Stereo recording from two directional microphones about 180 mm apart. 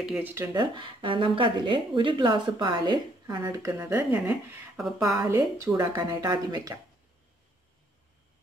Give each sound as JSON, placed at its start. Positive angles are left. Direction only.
{"t": 0.0, "sound": "speech", "side_deg": -5}
{"t": 5.0, "sound": "speech", "side_deg": -15}